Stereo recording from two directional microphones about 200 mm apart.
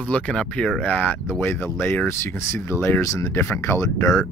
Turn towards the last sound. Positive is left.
turn(degrees=15)  # may be behind; listen again after turning